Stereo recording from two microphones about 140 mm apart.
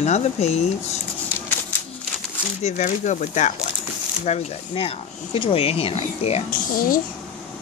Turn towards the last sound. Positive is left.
turn(degrees=85)